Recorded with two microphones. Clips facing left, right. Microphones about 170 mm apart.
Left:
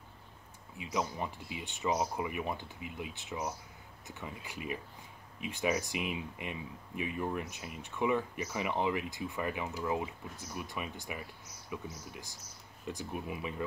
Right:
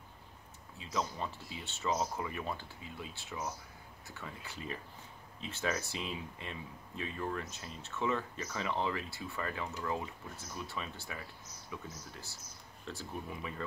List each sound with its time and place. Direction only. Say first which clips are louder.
0.7 s speech: left 2 dB; 15° left (ahead or behind)